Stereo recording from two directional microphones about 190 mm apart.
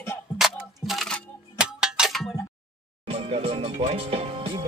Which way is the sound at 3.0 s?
30° right (ahead or behind).